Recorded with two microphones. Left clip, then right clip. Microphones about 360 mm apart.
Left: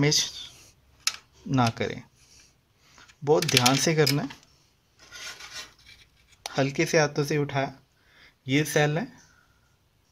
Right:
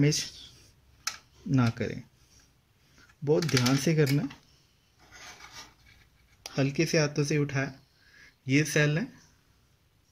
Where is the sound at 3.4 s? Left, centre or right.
Left.